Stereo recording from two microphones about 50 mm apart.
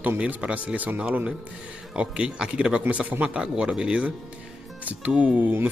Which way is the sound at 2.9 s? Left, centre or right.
Right.